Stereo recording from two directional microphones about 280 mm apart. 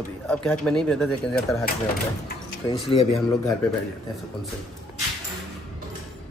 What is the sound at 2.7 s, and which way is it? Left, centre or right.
Speech, centre.